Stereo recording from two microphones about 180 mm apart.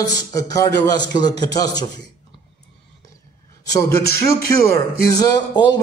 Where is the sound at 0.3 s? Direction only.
20° left (ahead or behind).